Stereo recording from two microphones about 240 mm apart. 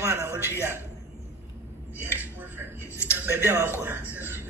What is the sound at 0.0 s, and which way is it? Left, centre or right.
Speech, centre.